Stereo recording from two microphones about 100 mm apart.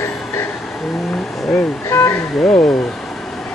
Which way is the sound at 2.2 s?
Centre (ahead or behind).